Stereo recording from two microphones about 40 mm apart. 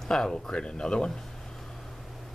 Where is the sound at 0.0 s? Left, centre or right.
Centre.